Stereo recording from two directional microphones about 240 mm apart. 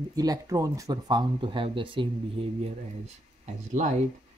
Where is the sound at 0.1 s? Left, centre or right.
Centre.